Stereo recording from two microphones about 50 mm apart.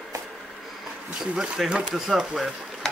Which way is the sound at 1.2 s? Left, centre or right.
Centre.